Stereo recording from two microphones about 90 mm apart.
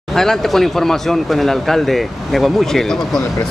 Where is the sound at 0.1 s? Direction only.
5° left (ahead or behind).